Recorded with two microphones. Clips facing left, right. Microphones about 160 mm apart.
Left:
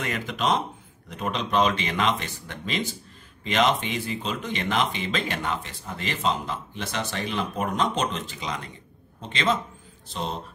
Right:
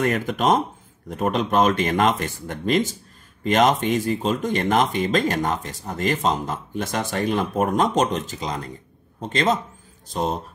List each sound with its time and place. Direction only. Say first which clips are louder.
0.0 s speech: right 7 dB; 50° right (ahead or behind)